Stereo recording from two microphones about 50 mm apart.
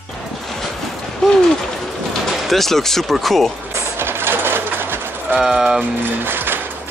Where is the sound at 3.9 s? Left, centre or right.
Right.